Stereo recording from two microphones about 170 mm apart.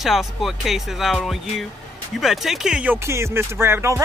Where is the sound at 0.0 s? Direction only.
Centre (ahead or behind).